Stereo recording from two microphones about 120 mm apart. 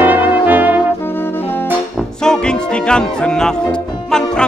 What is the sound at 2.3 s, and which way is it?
Music, 5° left (ahead or behind).